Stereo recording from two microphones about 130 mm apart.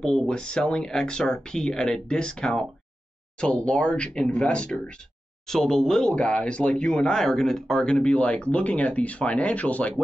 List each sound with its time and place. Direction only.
0.0 s speech: 5° left (ahead or behind)